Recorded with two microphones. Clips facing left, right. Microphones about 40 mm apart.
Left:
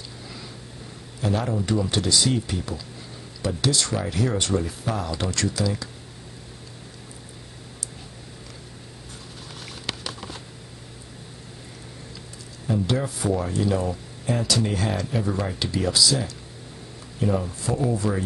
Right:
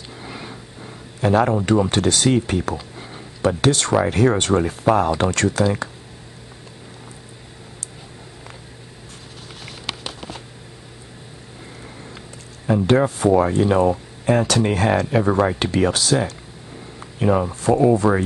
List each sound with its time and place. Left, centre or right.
0.2 s vehicle: right
1.2 s speech: right
12.6 s speech: right